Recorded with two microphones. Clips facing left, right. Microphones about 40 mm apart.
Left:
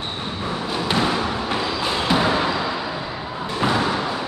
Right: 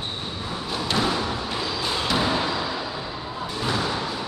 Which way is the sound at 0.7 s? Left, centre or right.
Centre.